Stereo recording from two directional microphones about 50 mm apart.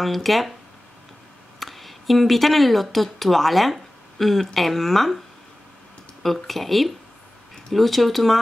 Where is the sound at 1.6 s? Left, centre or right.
Centre.